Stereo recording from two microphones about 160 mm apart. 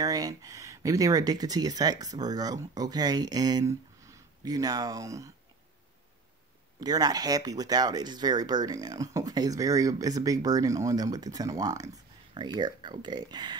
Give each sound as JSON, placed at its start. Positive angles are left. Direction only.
{"t": 0.0, "sound": "speech", "side_deg": -25}
{"t": 6.8, "sound": "speech", "side_deg": -25}